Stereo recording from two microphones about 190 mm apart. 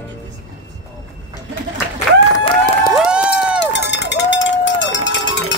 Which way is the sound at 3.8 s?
65° left (ahead or behind).